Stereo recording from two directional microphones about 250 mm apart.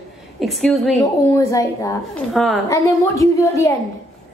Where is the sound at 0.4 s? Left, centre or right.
Centre.